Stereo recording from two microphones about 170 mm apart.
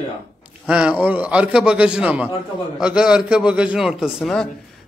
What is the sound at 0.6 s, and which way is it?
A man's voice, 5° right (ahead or behind).